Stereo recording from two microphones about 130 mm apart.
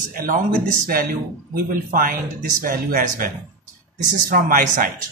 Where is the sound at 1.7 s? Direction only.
90° right.